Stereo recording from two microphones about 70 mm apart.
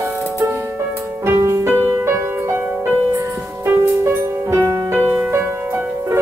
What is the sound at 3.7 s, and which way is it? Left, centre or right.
Music, right.